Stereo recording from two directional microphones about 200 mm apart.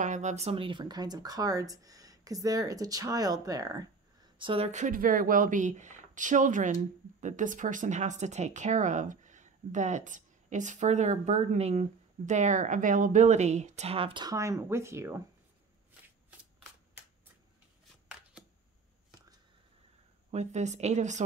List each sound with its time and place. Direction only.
0.0 s speech: 35° right (ahead or behind); by 15.2 s 15° right (ahead or behind)
20.2 s speech: 35° right (ahead or behind)